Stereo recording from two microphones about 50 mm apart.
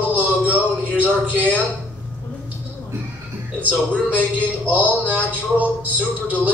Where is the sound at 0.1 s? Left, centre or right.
Right.